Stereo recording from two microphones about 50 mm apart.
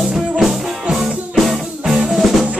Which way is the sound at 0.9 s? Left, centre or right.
Centre.